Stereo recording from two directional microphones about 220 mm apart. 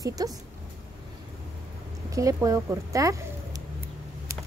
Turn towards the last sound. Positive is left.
turn(degrees=-15)  # may be behind; listen again after turning